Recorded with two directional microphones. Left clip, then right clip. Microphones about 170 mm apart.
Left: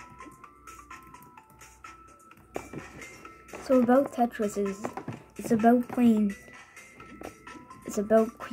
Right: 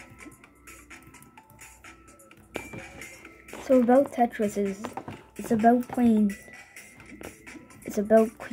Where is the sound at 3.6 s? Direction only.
10° right (ahead or behind).